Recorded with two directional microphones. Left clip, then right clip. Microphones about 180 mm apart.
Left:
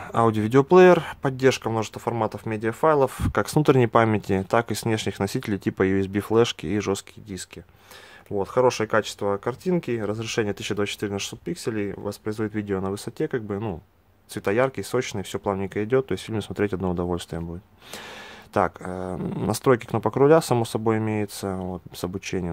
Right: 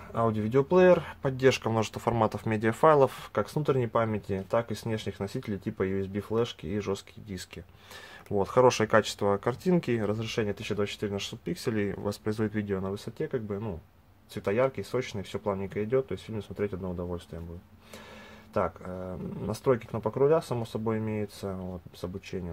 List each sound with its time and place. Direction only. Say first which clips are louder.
0.0 s speech: left 7 dB; 40° left (ahead or behind); by 3.1 s 5° left (ahead or behind)
3.1 s speech: left 6 dB; 25° left (ahead or behind)
8.3 s speech: left 2 dB; 10° left (ahead or behind)
10.1 s speech: left 5 dB; 25° left (ahead or behind)
12.6 s speech: left 5 dB; 30° left (ahead or behind)
18.5 s speech: left 7 dB; 35° left (ahead or behind)